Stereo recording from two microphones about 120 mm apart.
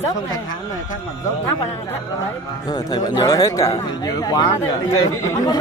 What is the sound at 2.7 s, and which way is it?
Speech, 35° left (ahead or behind).